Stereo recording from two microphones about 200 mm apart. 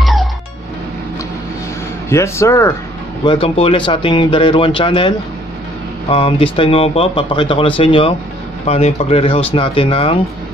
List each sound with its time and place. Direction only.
0.0 s music: centre (ahead or behind)
2.0 s speech: 15° left (ahead or behind)
3.3 s speech: 25° left (ahead or behind)